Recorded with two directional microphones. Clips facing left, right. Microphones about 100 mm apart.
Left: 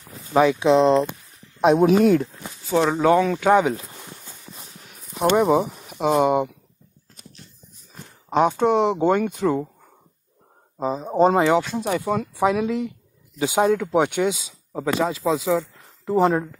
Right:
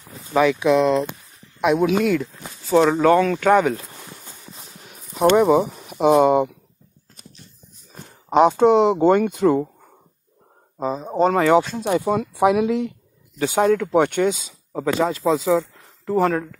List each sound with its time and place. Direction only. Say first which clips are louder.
0.3 s speech: even; 25° left (ahead or behind)
2.4 s speech: right 4 dB; 5° left (ahead or behind)
5.3 s speech: right 2 dB; centre (ahead or behind)
7.9 s speech: right 4 dB; 15° right (ahead or behind)
10.8 s speech: even; 5° left (ahead or behind)
11.1 s speech: left 1 dB; 20° left (ahead or behind)
11.6 s speech: right 3 dB; 5° left (ahead or behind)
13.4 s speech: right 1 dB; 10° left (ahead or behind)